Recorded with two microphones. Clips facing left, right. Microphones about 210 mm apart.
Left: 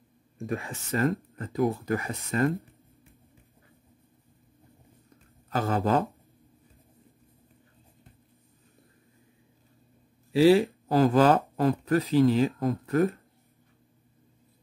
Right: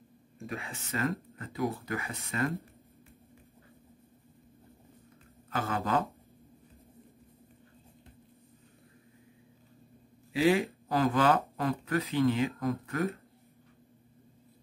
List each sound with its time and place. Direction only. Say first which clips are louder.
0.5 s speech: left 7 dB; 45° left (ahead or behind)
5.5 s speech: left 5 dB; 40° left (ahead or behind)
10.3 s speech: left 7 dB; 35° left (ahead or behind)